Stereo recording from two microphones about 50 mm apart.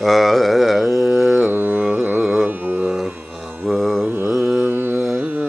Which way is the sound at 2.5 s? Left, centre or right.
Right.